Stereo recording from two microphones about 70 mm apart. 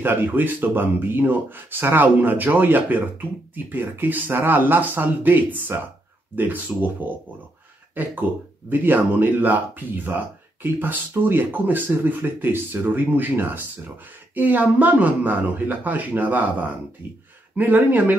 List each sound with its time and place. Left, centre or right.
0.0 s speech: right